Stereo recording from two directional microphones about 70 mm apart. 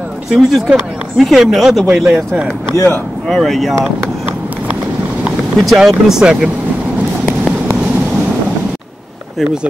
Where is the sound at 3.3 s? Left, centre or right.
Centre.